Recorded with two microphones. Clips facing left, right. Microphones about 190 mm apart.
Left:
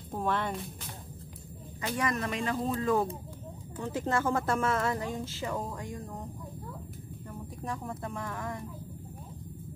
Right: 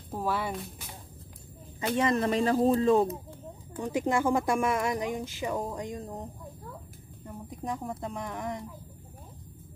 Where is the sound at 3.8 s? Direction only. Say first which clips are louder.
Right 3 dB; 15° right (ahead or behind).